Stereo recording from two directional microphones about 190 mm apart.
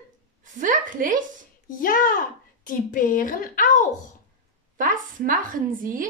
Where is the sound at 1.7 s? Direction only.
45° left (ahead or behind).